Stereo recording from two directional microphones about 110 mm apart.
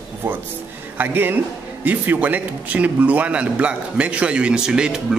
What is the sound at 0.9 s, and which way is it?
Speech, 15° right (ahead or behind).